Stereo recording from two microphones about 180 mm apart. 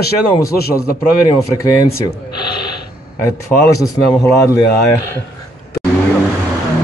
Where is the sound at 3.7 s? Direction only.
15° left (ahead or behind).